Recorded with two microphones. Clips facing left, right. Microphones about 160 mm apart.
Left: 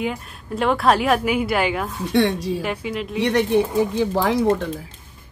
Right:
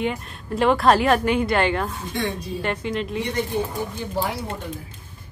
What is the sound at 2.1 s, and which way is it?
Speech, 80° left.